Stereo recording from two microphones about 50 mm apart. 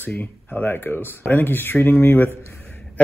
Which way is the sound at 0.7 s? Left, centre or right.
Left.